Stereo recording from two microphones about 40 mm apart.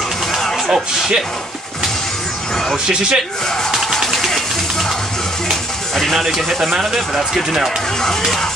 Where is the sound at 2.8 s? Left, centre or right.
Right.